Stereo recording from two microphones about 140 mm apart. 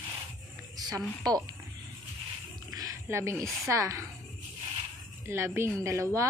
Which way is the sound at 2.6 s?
25° right (ahead or behind).